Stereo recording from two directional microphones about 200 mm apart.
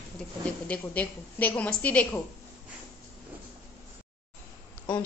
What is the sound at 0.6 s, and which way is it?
A woman's voice, 5° left (ahead or behind).